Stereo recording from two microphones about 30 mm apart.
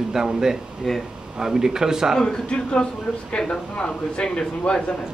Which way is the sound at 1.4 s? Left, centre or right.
Centre.